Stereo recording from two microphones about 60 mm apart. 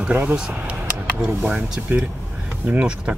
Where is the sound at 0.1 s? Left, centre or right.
Right.